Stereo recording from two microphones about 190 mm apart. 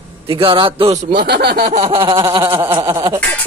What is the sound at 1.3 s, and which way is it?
Chuckle, 60° right (ahead or behind).